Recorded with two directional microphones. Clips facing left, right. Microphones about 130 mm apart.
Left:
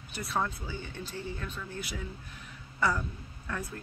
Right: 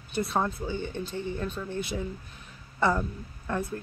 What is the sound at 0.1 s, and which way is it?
Speech, 25° right (ahead or behind).